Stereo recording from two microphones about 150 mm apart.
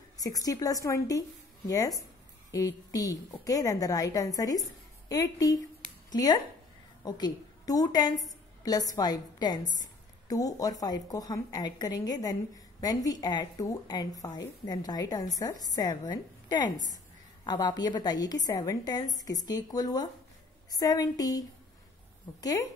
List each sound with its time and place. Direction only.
0.2 s a woman's voice: 25° left (ahead or behind)